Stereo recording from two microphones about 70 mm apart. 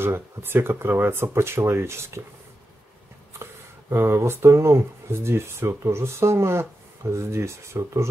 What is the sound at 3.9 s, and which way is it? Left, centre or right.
Speech, right.